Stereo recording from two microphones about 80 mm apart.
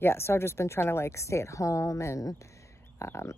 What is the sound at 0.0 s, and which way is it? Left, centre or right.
Speech, left.